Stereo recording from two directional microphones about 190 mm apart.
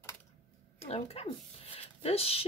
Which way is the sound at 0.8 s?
35° left (ahead or behind).